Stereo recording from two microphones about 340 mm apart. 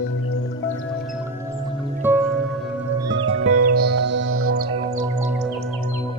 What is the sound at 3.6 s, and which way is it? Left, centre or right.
Music, right.